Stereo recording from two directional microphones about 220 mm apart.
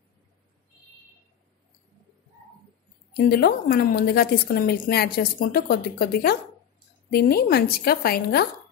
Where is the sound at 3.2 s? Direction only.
45° left (ahead or behind).